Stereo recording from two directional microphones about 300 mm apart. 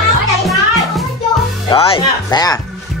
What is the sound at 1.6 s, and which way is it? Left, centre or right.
Speech, centre.